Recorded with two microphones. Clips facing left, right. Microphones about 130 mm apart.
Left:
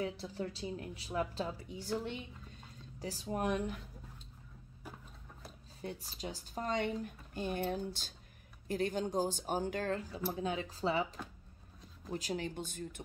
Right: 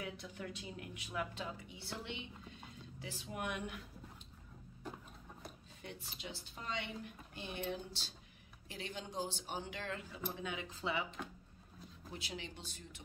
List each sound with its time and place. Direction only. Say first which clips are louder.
0.0 s a woman's voice: left 7 dB; 30° left (ahead or behind)
5.8 s a woman's voice: left 8 dB; 35° left (ahead or behind)